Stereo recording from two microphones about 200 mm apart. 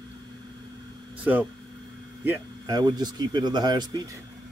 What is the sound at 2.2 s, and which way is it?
Speech, 15° right (ahead or behind).